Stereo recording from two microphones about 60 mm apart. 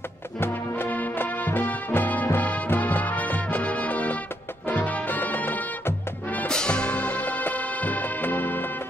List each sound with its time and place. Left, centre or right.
0.4 s music: left
6.5 s music: centre; by 8.6 s left